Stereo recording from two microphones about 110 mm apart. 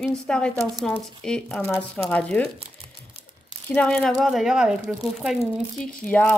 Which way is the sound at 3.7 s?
10° left (ahead or behind).